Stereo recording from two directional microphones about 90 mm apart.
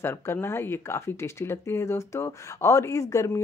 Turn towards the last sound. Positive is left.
turn(degrees=35)  # may be behind; listen again after turning